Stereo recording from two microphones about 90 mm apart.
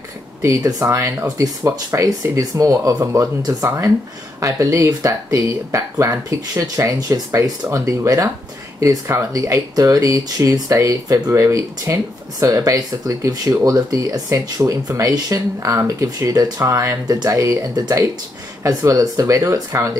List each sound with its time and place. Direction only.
0.4 s speech: 40° right (ahead or behind)